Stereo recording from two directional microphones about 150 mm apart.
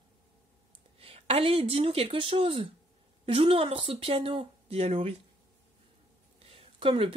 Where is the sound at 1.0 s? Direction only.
40° right (ahead or behind).